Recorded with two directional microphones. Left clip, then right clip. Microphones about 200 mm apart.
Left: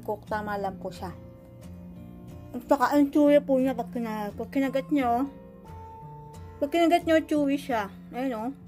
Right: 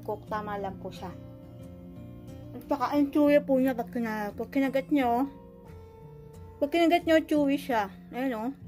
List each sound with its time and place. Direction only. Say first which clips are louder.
0.0 s speech: left 2 dB; 15° left (ahead or behind)
0.5 s speech: left 4 dB; 30° left (ahead or behind)
2.7 s speech: left 5 dB; 30° left (ahead or behind)
3.2 s a woman's voice: left 1 dB; 10° left (ahead or behind)
6.6 s a woman's voice: left 1 dB; centre (ahead or behind)